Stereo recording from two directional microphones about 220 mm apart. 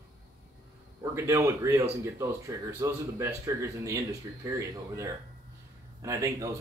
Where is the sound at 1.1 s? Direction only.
15° right (ahead or behind).